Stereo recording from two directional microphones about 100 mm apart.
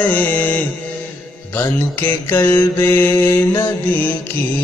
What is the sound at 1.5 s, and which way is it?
Mantra, 20° left (ahead or behind).